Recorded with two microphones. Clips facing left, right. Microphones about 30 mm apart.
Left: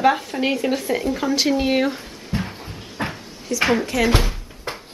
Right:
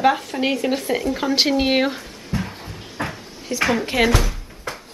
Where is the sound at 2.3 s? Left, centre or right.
Left.